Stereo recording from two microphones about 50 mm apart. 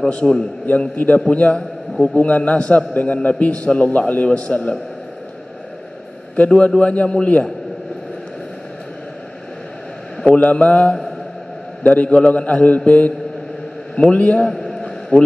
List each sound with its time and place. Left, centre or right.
0.2 s a man's voice: centre
0.7 s a man's voice: left
6.3 s a man's voice: left
10.2 s a man's voice: left
14.5 s a sound: centre